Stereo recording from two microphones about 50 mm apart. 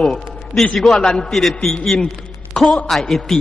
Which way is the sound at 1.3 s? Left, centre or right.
Centre.